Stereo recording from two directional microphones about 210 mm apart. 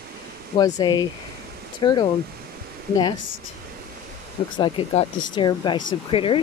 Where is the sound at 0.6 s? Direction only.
20° left (ahead or behind).